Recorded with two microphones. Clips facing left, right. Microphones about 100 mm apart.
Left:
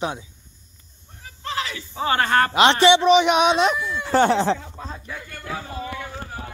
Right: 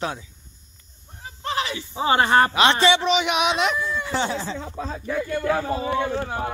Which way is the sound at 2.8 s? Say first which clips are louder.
Left 5 dB; 25° left (ahead or behind).